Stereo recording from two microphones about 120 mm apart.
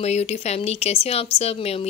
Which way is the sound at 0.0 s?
65° left (ahead or behind).